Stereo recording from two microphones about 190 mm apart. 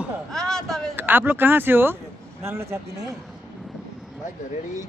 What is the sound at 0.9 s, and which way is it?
Speech, 10° right (ahead or behind).